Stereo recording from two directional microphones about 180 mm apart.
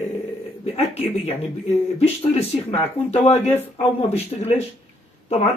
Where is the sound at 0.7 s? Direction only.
35° left (ahead or behind).